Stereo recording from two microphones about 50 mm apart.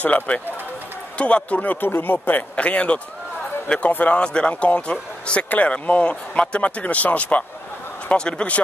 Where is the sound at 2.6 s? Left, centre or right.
Left.